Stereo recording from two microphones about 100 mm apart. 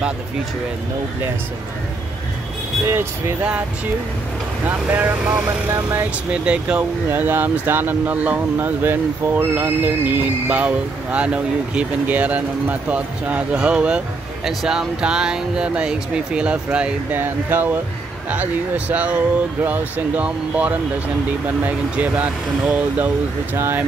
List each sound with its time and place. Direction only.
2.9 s speech: 25° right (ahead or behind)
4.6 s speech: 15° right (ahead or behind)